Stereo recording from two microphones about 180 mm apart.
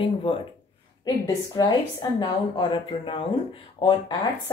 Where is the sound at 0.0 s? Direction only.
30° left (ahead or behind).